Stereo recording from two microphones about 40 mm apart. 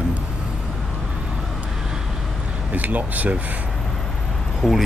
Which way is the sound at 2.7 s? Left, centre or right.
Right.